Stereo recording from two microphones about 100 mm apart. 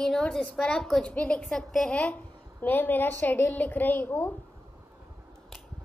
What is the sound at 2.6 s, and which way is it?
A woman's voice, 20° left (ahead or behind).